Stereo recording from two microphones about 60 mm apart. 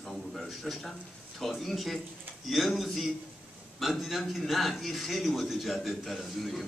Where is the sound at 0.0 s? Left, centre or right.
Centre.